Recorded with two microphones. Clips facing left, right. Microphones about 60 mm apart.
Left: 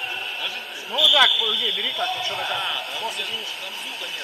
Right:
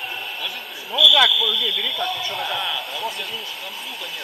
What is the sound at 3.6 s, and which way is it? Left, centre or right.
Speech, right.